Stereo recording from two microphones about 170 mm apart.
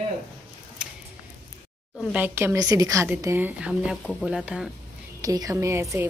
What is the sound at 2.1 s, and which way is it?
A woman's voice, 10° right (ahead or behind).